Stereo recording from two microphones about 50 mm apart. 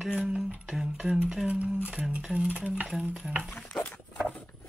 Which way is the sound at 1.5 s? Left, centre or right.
Right.